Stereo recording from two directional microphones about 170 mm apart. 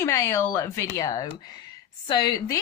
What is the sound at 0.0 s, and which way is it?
Speech, 15° left (ahead or behind).